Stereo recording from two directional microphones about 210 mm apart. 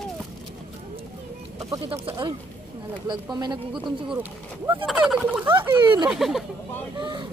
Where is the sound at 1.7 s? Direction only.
25° right (ahead or behind).